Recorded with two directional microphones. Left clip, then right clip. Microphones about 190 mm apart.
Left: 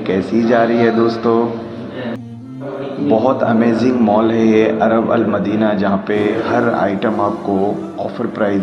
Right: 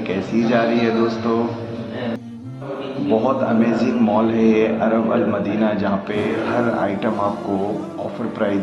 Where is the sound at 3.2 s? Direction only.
20° left (ahead or behind).